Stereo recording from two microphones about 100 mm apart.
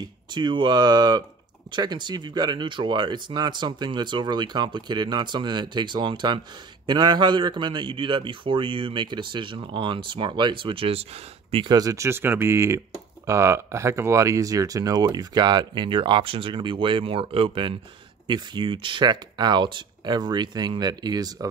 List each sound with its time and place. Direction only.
0.0 s a man's voice: 50° right (ahead or behind); by 11.6 s 85° right
11.6 s speech: 40° right (ahead or behind)